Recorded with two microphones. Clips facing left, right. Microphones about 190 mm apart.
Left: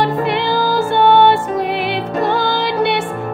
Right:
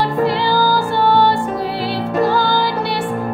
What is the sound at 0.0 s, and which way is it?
Music, 20° left (ahead or behind).